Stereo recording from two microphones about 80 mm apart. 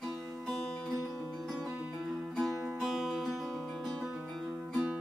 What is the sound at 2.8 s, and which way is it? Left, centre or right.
Music, centre.